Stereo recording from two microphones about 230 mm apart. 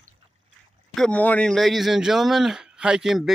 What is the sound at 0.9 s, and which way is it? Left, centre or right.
A man's voice, centre.